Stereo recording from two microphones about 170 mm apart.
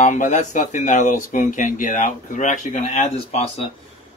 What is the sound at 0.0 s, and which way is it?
Speech, 45° left (ahead or behind).